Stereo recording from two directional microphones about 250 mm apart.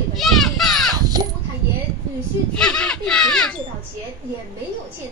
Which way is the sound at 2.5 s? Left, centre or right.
Centre.